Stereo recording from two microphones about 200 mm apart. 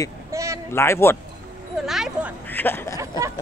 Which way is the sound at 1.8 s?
Centre (ahead or behind).